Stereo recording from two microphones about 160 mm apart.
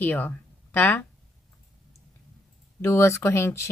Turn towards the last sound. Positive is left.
turn(degrees=15)  # may be behind; listen again after turning